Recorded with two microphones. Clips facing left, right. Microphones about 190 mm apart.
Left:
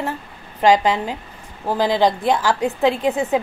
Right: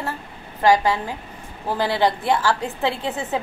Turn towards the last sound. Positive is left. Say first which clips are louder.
# left 6 dB
turn(degrees=15)  # may be behind; listen again after turning